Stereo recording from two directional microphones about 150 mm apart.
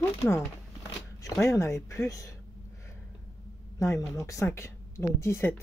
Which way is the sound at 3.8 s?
20° left (ahead or behind).